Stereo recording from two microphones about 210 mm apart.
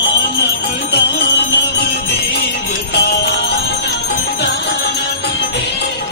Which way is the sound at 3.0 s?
55° left (ahead or behind).